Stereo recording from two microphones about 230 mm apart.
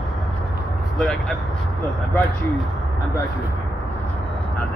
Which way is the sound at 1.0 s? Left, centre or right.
Centre.